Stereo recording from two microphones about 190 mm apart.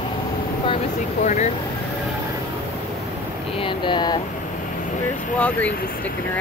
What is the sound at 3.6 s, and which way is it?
Speech, 25° left (ahead or behind).